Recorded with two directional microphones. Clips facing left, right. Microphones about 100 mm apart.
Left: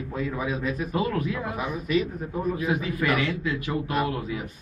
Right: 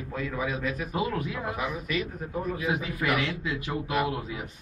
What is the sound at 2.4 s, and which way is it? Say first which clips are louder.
Speech: left 4 dB; 30° left (ahead or behind).